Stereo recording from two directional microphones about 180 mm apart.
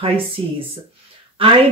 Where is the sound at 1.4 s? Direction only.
30° right (ahead or behind).